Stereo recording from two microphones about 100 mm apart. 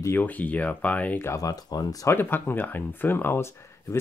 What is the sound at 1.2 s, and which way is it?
Speech, 35° left (ahead or behind).